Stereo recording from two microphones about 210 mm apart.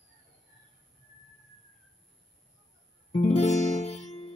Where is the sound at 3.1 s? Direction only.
30° left (ahead or behind).